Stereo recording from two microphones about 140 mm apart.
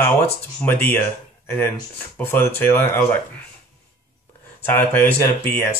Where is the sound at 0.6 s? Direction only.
10° left (ahead or behind).